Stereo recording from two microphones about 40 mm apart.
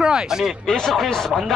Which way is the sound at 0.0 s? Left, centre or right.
Centre.